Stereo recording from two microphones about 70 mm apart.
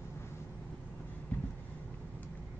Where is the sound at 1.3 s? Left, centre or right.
Left.